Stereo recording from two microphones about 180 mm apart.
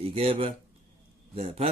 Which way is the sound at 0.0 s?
30° right (ahead or behind).